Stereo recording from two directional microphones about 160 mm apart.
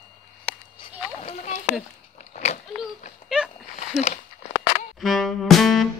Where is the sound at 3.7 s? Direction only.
45° left (ahead or behind).